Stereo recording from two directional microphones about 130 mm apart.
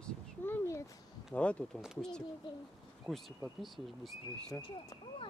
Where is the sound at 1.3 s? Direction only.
10° left (ahead or behind).